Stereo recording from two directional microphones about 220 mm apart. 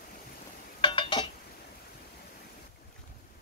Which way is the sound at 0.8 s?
20° left (ahead or behind).